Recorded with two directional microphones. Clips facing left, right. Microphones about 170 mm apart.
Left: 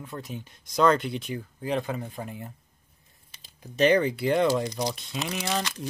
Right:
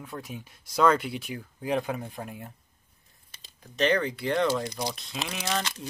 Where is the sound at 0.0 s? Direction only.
10° right (ahead or behind).